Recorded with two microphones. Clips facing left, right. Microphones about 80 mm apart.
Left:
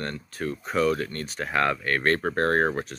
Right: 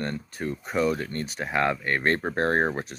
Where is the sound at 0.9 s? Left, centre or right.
Centre.